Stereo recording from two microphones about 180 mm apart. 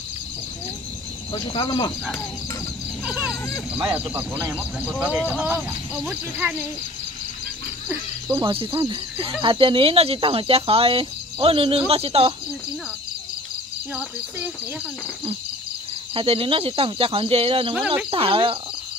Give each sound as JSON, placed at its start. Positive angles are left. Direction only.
{"t": 1.3, "sound": "speech", "side_deg": 25}
{"t": 3.1, "sound": "speech", "side_deg": -5}
{"t": 8.3, "sound": "speech", "side_deg": -25}
{"t": 16.2, "sound": "speech", "side_deg": -30}
{"t": 17.7, "sound": "speech", "side_deg": -5}
{"t": 18.1, "sound": "speech", "side_deg": -30}